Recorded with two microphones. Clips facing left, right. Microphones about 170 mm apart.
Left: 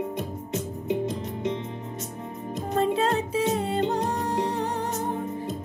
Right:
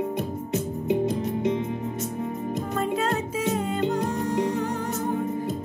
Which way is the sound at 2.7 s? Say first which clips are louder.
Left 4 dB; 35° left (ahead or behind).